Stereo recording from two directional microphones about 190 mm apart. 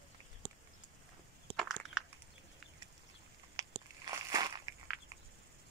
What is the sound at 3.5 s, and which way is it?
Biting, 20° right (ahead or behind).